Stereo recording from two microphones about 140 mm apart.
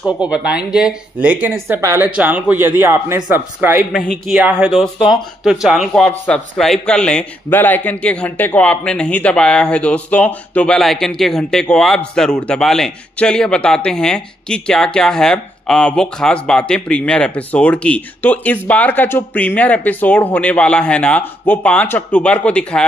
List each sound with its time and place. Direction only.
0.0 s speech: 10° right (ahead or behind)
3.9 s speech: 5° left (ahead or behind)